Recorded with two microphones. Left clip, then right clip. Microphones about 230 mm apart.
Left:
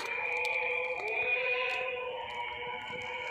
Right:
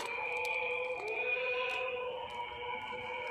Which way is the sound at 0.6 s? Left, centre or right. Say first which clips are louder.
Left 3 dB; centre.